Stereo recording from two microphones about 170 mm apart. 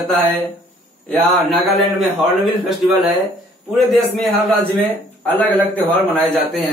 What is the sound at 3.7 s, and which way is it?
Speech, centre (ahead or behind).